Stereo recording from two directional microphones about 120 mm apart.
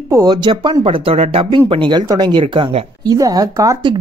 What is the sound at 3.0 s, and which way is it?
Speech, 30° right (ahead or behind).